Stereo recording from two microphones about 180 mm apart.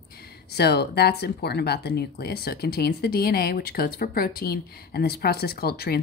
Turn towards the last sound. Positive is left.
turn(degrees=60)  # may be behind; listen again after turning